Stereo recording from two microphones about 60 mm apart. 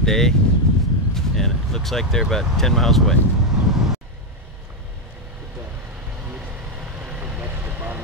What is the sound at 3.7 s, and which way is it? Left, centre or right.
Vehicle, centre.